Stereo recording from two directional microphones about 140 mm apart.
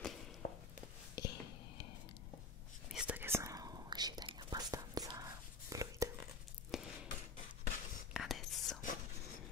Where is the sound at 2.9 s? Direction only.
5° right (ahead or behind); by 6.0 s 25° right (ahead or behind).